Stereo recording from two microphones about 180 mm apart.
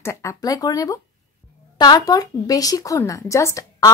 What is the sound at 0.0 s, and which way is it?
Speech, 15° left (ahead or behind).